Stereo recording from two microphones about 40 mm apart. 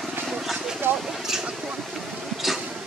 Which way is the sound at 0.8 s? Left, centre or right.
Right.